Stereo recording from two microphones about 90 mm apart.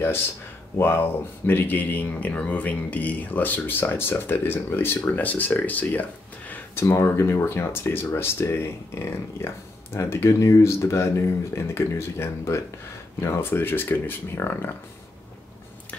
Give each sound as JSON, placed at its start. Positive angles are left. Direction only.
{"t": 0.7, "sound": "speech", "side_deg": 25}